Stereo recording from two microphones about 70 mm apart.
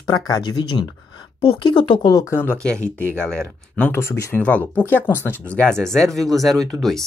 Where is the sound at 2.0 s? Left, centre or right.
Left.